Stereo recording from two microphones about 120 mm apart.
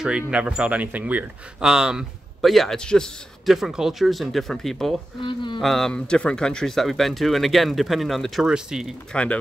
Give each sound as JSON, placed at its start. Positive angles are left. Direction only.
{"t": 0.3, "sound": "a man's voice", "side_deg": -10}
{"t": 5.2, "sound": "a sound", "side_deg": 40}
{"t": 5.6, "sound": "a man's voice", "side_deg": 0}
{"t": 9.1, "sound": "speech", "side_deg": 10}